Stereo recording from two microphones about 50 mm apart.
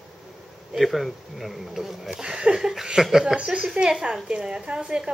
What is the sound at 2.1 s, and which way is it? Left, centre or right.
A woman's voice, centre.